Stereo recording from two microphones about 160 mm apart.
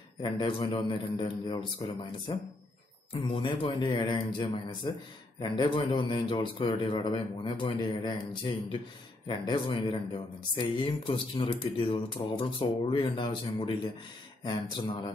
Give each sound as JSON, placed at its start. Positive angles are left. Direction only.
{"t": 0.2, "sound": "a man's voice", "side_deg": 30}